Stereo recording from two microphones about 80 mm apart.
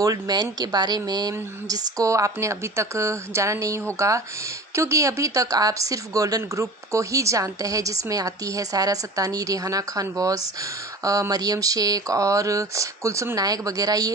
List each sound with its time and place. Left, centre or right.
0.0 s speech: right
13.4 s speech: right